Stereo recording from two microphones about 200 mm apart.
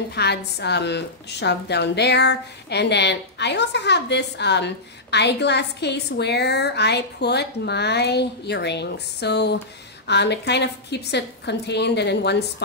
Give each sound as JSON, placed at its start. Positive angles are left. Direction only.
{"t": 0.1, "sound": "a woman's voice", "side_deg": 55}